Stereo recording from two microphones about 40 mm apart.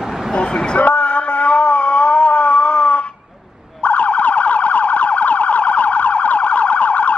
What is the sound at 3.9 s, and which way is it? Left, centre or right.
Emergency vehicle, left.